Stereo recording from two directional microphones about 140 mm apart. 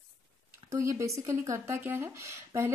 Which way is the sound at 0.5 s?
20° right (ahead or behind).